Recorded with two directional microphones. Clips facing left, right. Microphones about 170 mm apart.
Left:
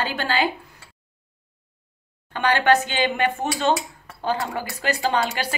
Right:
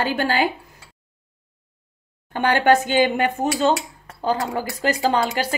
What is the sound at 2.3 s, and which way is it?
Speech, 45° right (ahead or behind).